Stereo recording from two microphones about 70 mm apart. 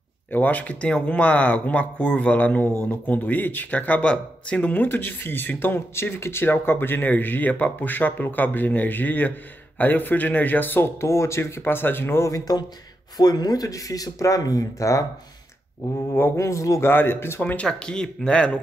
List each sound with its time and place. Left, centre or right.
0.3 s speech: left
12.3 s speech: left
13.2 s speech: left
16.1 s speech: left
16.8 s speech: left
17.4 s speech: centre